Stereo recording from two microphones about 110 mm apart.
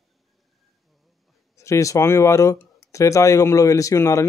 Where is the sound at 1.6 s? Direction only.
30° left (ahead or behind).